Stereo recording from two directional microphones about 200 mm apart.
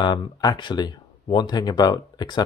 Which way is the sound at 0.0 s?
20° left (ahead or behind).